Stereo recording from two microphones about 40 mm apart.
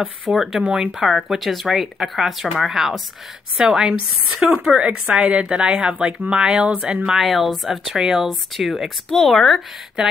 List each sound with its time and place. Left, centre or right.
0.3 s a woman's voice: centre
0.6 s speech: right
1.0 s speech: centre
4.7 s speech: right
5.9 s speech: right
7.2 s a woman's voice: centre
8.0 s speech: centre
8.3 s a woman's voice: centre
9.1 s a woman's voice: centre